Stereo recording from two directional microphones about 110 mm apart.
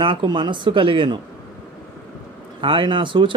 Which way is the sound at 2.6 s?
50° right (ahead or behind).